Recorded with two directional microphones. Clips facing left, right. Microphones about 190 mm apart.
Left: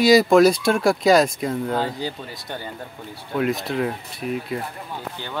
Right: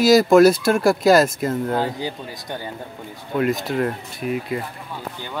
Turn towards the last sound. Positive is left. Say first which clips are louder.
# right 2 dB
turn(degrees=0)  # may be behind; listen again after turning